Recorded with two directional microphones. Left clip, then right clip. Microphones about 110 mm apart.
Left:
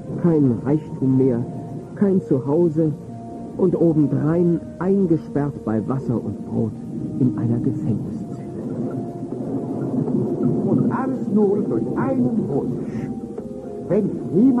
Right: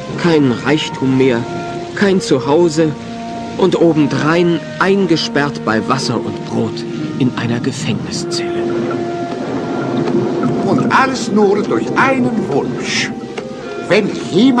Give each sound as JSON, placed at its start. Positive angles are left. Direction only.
{"t": 0.2, "sound": "speech", "side_deg": 30}
{"t": 2.0, "sound": "speech", "side_deg": 30}
{"t": 10.4, "sound": "speech", "side_deg": 30}